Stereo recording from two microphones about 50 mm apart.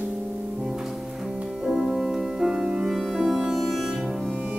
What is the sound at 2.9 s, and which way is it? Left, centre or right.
Music, centre.